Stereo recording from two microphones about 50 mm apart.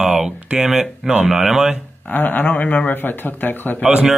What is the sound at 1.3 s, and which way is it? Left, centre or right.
Speech, centre.